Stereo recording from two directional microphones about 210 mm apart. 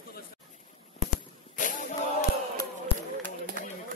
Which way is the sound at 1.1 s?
40° left (ahead or behind).